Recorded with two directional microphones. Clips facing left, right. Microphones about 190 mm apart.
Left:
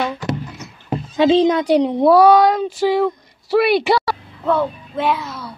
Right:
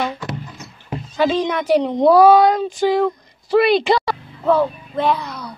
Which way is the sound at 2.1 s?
Centre (ahead or behind).